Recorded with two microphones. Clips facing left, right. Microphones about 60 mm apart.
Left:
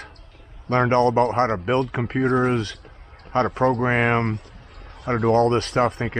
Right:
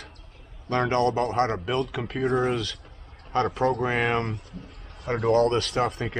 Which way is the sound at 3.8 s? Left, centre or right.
Left.